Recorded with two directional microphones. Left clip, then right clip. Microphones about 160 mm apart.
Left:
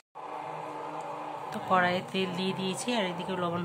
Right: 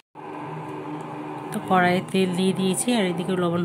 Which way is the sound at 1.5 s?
20° right (ahead or behind).